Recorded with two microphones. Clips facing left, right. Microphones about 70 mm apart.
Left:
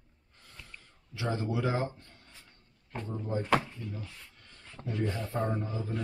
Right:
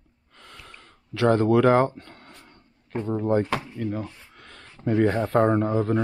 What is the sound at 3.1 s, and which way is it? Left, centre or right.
Speech, right.